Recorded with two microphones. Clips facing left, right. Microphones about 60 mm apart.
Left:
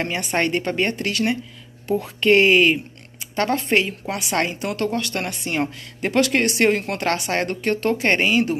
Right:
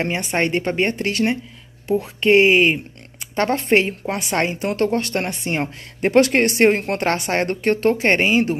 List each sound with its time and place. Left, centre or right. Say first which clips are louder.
0.0 s speech: right 1 dB; right
1.9 s speech: right 1 dB; centre